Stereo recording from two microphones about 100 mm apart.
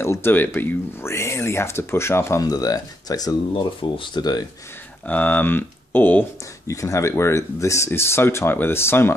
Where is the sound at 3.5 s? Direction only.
60° left (ahead or behind).